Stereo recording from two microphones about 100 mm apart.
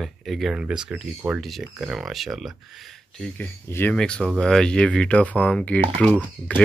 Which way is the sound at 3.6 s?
20° left (ahead or behind).